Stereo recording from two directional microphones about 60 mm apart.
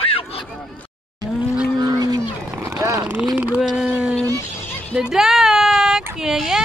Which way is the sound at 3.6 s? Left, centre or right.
Centre.